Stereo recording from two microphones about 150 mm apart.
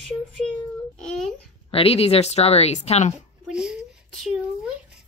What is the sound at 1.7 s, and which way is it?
A woman's voice, 40° left (ahead or behind).